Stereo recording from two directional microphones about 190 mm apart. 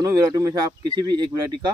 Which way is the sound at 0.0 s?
20° right (ahead or behind).